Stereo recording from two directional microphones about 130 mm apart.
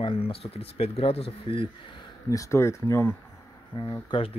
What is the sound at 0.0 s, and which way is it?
Speech, 45° left (ahead or behind).